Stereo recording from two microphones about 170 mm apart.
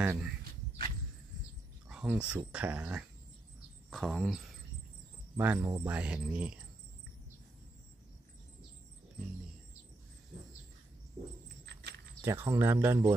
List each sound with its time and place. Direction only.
0.0 s speech: 10° right (ahead or behind)
0.4 s cricket: 65° right (ahead or behind)
1.9 s speech: 5° right (ahead or behind)
11.6 s a sound: 75° right (ahead or behind)
12.2 s speech: 15° right (ahead or behind)